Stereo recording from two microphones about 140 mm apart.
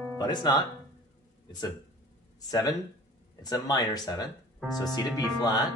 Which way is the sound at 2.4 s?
30° left (ahead or behind).